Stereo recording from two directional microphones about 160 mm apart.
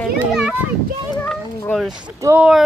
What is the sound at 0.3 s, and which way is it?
Children playing, 5° right (ahead or behind).